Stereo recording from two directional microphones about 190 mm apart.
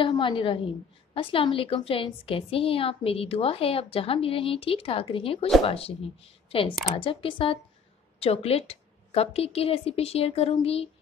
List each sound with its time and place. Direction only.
0.0 s a woman's voice: 25° left (ahead or behind)